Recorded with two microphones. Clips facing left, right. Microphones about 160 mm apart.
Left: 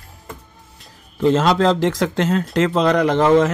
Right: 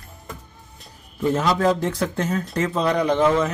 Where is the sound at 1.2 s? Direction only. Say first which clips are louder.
Left 5 dB; 85° left.